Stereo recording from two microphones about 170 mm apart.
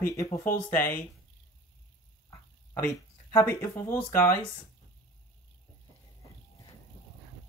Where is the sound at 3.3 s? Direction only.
15° left (ahead or behind).